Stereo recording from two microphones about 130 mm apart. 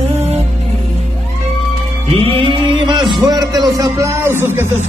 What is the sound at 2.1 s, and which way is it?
Music, 45° right (ahead or behind).